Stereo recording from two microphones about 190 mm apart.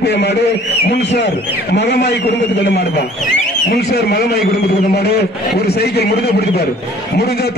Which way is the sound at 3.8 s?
60° left (ahead or behind).